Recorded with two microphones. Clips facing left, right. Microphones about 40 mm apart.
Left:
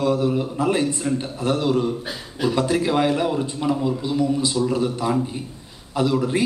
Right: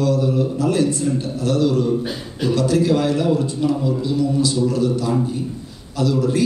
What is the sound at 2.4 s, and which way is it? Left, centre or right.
A man's voice, left.